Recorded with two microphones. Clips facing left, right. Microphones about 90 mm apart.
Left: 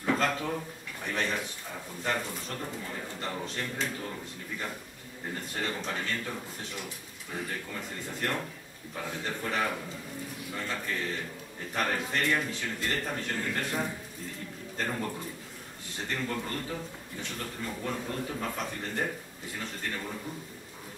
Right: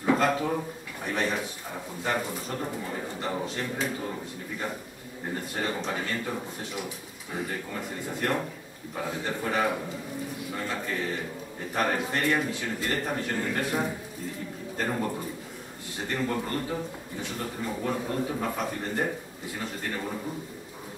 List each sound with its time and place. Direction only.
0.0 s a man's voice: 10° right (ahead or behind)
5.9 s a man's voice: 10° right (ahead or behind)